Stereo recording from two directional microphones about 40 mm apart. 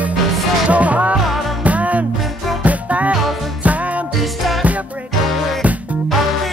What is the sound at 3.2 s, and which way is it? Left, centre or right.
Music, centre.